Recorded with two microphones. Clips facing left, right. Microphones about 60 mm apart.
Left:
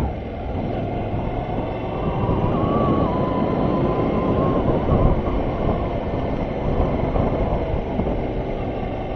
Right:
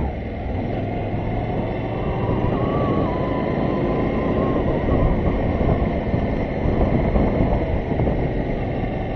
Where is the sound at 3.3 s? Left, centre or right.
Right.